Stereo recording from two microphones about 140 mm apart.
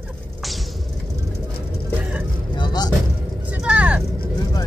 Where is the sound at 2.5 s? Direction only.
30° left (ahead or behind).